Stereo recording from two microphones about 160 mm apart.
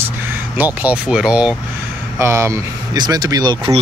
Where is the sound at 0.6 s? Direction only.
10° right (ahead or behind).